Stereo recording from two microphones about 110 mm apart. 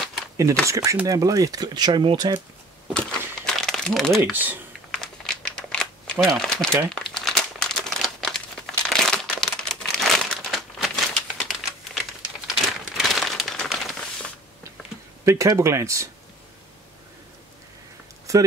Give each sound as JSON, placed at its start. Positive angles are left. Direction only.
{"t": 0.7, "sound": "speech", "side_deg": -30}
{"t": 2.9, "sound": "a sound", "side_deg": 5}
{"t": 4.2, "sound": "speech", "side_deg": -15}
{"t": 4.9, "sound": "crumpling", "side_deg": 5}
{"t": 6.4, "sound": "speech", "side_deg": 5}
{"t": 6.9, "sound": "crumpling", "side_deg": 5}
{"t": 15.2, "sound": "speech", "side_deg": -30}
{"t": 18.3, "sound": "speech", "side_deg": -30}